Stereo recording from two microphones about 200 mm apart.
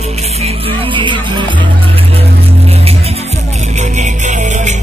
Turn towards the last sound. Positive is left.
turn(degrees=-35)  # may be behind; listen again after turning